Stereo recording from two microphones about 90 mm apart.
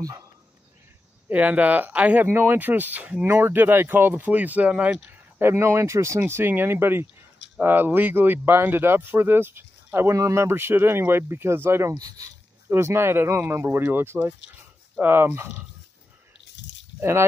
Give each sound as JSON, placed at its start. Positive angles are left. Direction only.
{"t": 0.0, "sound": "speech", "side_deg": -40}
{"t": 1.3, "sound": "speech", "side_deg": -15}
{"t": 12.0, "sound": "speech", "side_deg": -40}
{"t": 12.6, "sound": "speech", "side_deg": -30}
{"t": 17.0, "sound": "speech", "side_deg": -30}